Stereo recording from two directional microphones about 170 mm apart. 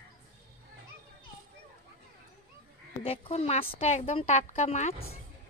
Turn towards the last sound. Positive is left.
turn(degrees=40)  # may be behind; listen again after turning